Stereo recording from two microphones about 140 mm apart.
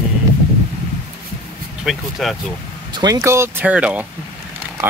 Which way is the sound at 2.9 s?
35° right (ahead or behind).